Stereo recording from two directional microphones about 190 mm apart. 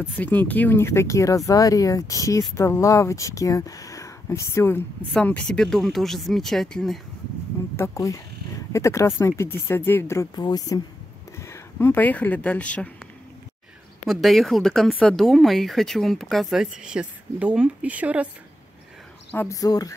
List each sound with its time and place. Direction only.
0.0 s speech: 10° left (ahead or behind)
7.7 s speech: 15° left (ahead or behind)
14.0 s speech: centre (ahead or behind)
19.3 s speech: 15° left (ahead or behind)